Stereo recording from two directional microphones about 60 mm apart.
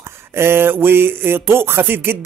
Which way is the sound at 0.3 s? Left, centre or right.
Right.